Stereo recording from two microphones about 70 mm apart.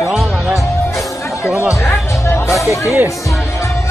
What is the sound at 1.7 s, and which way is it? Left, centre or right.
Music, left.